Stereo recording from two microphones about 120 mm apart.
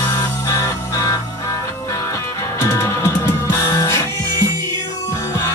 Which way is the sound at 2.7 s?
25° left (ahead or behind).